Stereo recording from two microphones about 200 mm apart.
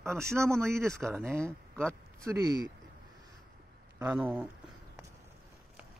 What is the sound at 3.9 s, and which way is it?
Speech, 10° right (ahead or behind).